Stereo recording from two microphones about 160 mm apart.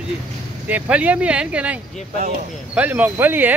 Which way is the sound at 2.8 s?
10° right (ahead or behind).